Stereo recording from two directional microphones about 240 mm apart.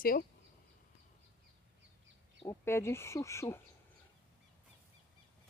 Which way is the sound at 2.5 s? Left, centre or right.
Centre.